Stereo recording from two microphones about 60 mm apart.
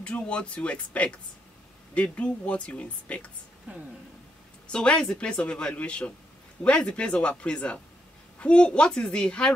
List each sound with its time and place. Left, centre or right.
0.0 s speech: centre
3.7 s a woman's voice: right
4.7 s speech: centre